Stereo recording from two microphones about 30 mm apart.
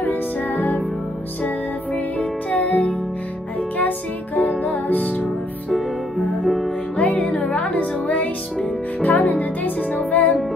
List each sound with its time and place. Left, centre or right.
0.0 s music: left
2.1 s music: left
4.4 s music: left
6.4 s music: centre
7.0 s music: left
9.0 s music: left